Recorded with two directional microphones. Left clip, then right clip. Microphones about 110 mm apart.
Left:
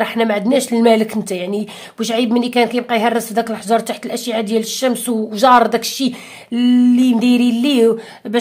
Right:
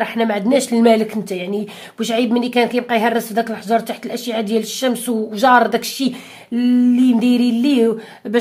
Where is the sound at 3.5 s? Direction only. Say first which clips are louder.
Left 2 dB; 30° left (ahead or behind).